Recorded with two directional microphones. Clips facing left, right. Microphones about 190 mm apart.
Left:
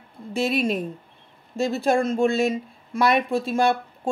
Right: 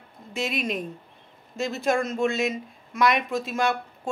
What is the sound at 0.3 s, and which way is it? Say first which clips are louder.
A woman's voice: left 6 dB; 35° left (ahead or behind).